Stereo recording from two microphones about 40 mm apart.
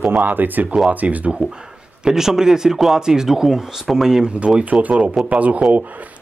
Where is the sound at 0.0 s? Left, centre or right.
Right.